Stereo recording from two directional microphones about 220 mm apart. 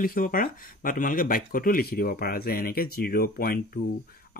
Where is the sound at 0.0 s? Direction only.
40° left (ahead or behind).